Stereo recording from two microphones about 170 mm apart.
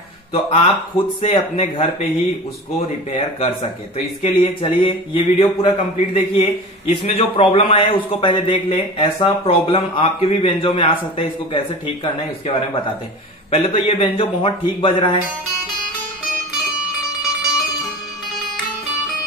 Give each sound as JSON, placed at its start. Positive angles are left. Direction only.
{"t": 0.3, "sound": "speech", "side_deg": 35}
{"t": 3.1, "sound": "speech", "side_deg": 35}